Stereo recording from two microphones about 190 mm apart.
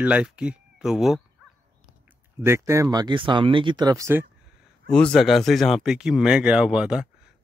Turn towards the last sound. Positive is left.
turn(degrees=-5)  # may be behind; listen again after turning